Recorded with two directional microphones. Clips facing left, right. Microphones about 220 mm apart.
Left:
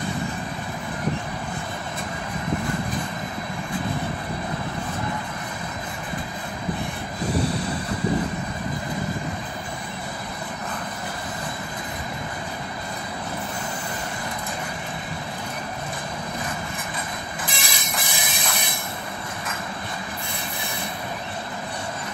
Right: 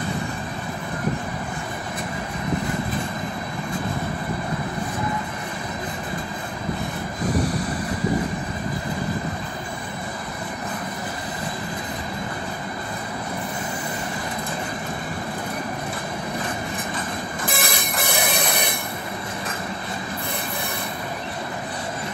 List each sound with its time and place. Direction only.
17.5 s train: 55° right (ahead or behind)